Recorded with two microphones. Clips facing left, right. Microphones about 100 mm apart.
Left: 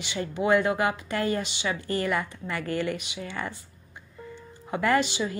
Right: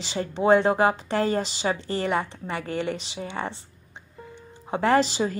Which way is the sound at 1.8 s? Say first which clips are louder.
Right 2 dB; 25° right (ahead or behind).